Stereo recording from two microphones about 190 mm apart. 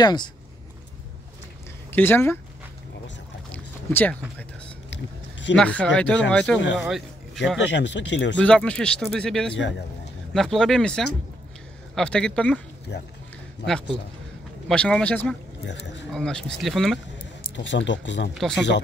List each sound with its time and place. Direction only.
0.0 s speech: 20° left (ahead or behind)
1.9 s speech: 10° left (ahead or behind)
3.5 s a sound: 10° left (ahead or behind)
4.9 s a sound: 70° left (ahead or behind)
5.6 s a man's voice: 5° left (ahead or behind)
7.7 s speech: 70° left (ahead or behind)
8.4 s speech: 5° left (ahead or behind)
9.6 s speech: 70° left (ahead or behind)
10.3 s speech: centre (ahead or behind)
14.7 s speech: 5° left (ahead or behind)
15.6 s speech: 70° left (ahead or behind)
16.1 s speech: 5° left (ahead or behind)
17.6 s speech: 70° left (ahead or behind)
18.3 s speech: centre (ahead or behind)